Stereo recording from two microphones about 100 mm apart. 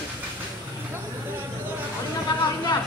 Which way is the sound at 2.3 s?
50° left (ahead or behind).